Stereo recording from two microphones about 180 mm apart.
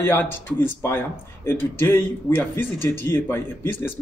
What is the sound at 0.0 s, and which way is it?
A man's voice, 10° left (ahead or behind).